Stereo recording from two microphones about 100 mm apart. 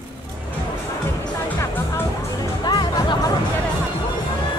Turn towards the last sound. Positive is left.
turn(degrees=45)  # may be behind; listen again after turning